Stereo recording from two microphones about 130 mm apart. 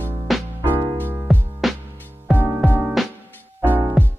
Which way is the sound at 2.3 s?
15° left (ahead or behind).